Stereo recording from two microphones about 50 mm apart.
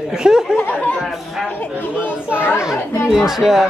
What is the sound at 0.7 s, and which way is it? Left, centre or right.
Speech, left.